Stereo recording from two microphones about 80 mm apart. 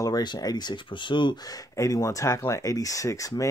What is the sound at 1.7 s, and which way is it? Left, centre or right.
Speech, left.